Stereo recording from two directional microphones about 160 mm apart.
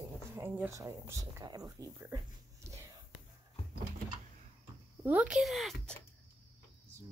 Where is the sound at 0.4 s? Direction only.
15° right (ahead or behind).